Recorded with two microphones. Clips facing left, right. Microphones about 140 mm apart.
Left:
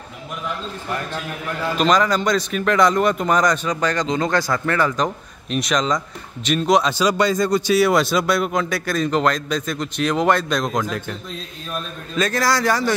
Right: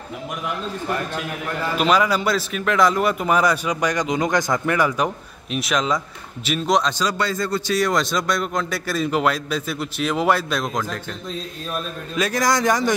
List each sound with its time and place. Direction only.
1.8 s a man's voice: 10° right (ahead or behind)
12.2 s a man's voice: 15° right (ahead or behind)